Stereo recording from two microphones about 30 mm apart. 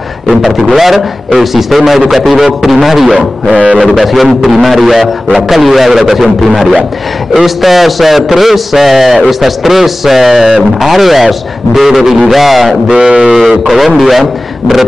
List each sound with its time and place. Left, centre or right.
0.7 s a man's voice: centre
12.8 s a sound: right
13.7 s a man's voice: centre